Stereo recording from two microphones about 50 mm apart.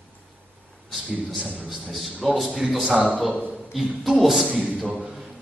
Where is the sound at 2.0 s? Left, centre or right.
Centre.